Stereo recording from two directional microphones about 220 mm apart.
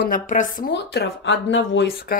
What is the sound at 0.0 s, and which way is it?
Speech, 35° left (ahead or behind).